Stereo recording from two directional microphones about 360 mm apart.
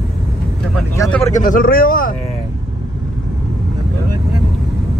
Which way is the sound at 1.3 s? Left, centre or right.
Left.